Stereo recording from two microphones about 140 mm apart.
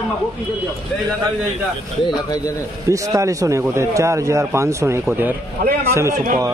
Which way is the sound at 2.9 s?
25° right (ahead or behind).